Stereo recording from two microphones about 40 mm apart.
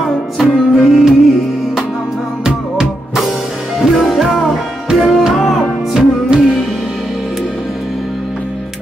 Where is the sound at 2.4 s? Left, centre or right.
Centre.